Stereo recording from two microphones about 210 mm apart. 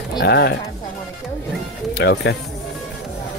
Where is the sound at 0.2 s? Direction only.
50° left (ahead or behind).